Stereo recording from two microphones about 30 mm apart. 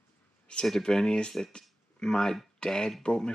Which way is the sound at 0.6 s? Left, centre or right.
Centre.